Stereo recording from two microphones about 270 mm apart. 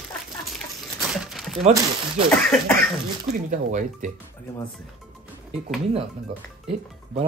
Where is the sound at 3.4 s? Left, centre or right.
Right.